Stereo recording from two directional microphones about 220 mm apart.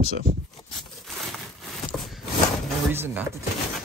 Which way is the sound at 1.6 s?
Centre (ahead or behind).